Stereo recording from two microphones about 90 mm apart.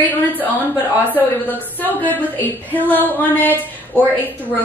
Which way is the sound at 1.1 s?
20° left (ahead or behind).